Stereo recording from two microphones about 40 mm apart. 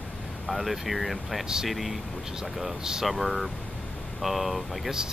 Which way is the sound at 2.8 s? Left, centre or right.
Centre.